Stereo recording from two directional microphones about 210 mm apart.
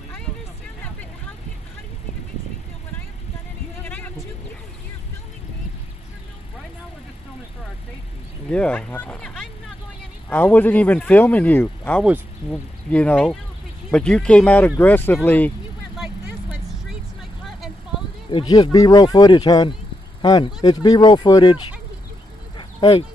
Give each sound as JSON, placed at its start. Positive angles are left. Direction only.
{"t": 3.8, "sound": "vehicle", "side_deg": 10}
{"t": 8.5, "sound": "speech", "side_deg": 5}
{"t": 18.3, "sound": "speech", "side_deg": 20}
{"t": 22.6, "sound": "a sound", "side_deg": 25}